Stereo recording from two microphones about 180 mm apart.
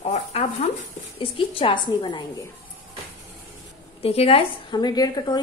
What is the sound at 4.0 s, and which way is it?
A woman's voice, 35° left (ahead or behind).